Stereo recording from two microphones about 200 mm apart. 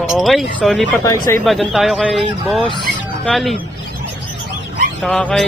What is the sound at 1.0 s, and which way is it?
Speech, 15° left (ahead or behind).